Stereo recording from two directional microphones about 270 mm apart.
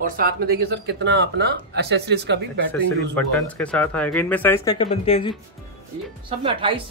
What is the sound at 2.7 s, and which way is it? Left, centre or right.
Speech, centre.